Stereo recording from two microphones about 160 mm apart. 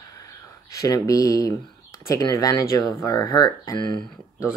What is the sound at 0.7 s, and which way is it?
Speech, 20° left (ahead or behind).